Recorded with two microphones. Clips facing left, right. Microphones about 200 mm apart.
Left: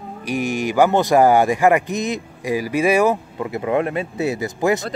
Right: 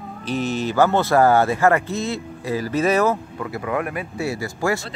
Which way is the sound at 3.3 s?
20° left (ahead or behind).